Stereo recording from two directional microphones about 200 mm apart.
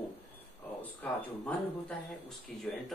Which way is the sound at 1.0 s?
5° left (ahead or behind).